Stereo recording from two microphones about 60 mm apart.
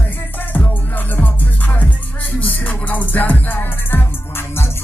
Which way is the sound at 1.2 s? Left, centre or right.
Left.